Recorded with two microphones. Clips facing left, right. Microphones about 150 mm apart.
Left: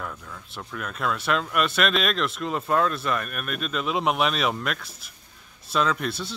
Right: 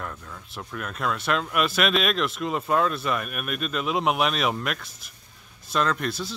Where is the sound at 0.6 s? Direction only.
5° right (ahead or behind).